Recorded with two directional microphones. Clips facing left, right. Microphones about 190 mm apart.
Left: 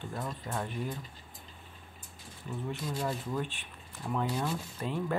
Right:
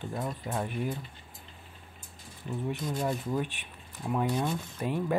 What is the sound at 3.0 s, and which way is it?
Speech, 15° right (ahead or behind).